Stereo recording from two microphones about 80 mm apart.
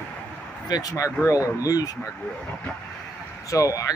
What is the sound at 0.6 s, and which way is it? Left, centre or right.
Speech, left.